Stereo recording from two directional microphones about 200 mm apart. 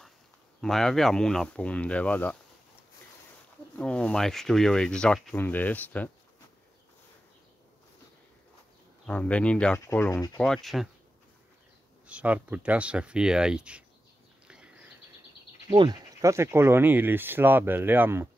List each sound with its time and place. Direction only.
0.6 s speech: centre (ahead or behind)
3.7 s speech: 5° left (ahead or behind)
9.0 s speech: 5° left (ahead or behind)
10.5 s speech: centre (ahead or behind)
12.1 s speech: 5° right (ahead or behind)
15.7 s speech: 25° right (ahead or behind)